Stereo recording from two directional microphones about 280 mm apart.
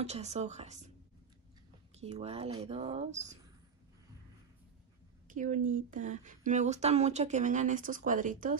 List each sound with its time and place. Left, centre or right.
0.0 s speech: right
2.0 s speech: right
5.3 s speech: right